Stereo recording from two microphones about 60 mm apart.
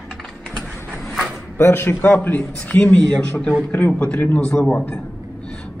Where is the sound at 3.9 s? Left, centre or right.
Left.